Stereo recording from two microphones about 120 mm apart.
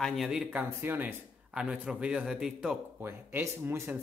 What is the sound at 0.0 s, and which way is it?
Speech, centre (ahead or behind).